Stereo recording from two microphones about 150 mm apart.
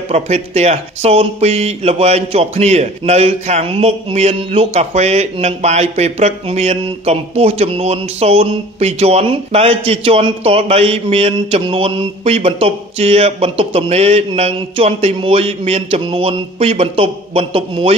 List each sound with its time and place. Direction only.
0.1 s speech: 45° right (ahead or behind)